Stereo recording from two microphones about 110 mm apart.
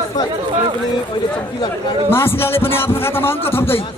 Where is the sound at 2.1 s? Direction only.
20° left (ahead or behind).